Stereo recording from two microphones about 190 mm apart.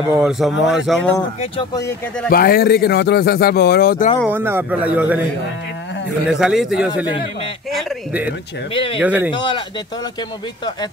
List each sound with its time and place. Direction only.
0.1 s a man's voice: 5° right (ahead or behind)
1.4 s speech: 25° left (ahead or behind)
1.9 s a man's voice: 55° left (ahead or behind)
4.3 s a man's voice: 10° right (ahead or behind)
6.3 s a man's voice: 5° right (ahead or behind)
8.7 s speech: 25° left (ahead or behind)
9.0 s a man's voice: 10° right (ahead or behind)
9.3 s speech: 25° left (ahead or behind)